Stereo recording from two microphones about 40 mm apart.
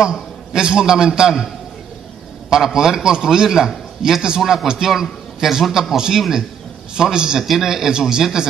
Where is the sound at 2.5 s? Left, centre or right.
Centre.